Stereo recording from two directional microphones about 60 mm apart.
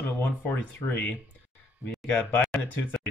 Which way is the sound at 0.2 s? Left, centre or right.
Left.